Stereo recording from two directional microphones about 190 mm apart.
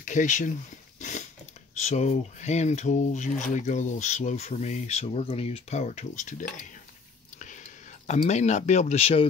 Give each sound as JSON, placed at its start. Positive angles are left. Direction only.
{"t": 0.0, "sound": "speech", "side_deg": 40}
{"t": 0.9, "sound": "dog", "side_deg": 40}
{"t": 1.8, "sound": "speech", "side_deg": 35}
{"t": 7.3, "sound": "whispering", "side_deg": 40}
{"t": 8.1, "sound": "speech", "side_deg": 35}